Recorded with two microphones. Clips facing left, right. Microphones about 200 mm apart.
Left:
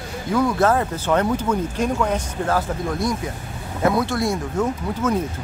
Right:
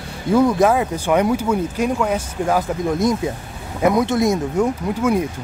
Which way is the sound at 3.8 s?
20° right (ahead or behind).